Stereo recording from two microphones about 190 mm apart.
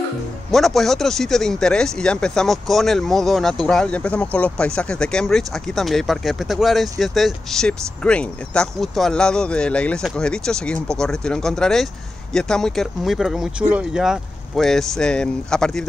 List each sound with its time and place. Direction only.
0.5 s speech: centre (ahead or behind)